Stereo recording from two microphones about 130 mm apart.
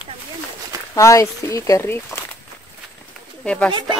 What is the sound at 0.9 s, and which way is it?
Speech, 25° left (ahead or behind).